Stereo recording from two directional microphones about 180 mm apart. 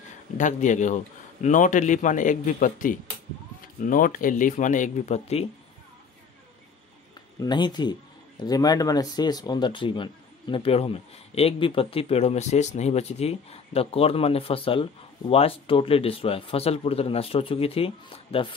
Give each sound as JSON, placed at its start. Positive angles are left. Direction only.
{"t": 0.4, "sound": "a man's voice", "side_deg": 45}
{"t": 7.3, "sound": "speech", "side_deg": 25}